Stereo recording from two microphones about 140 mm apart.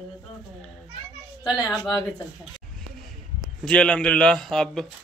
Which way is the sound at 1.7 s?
30° left (ahead or behind).